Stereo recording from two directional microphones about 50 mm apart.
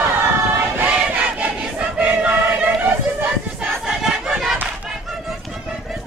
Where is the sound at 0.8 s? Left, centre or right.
Right.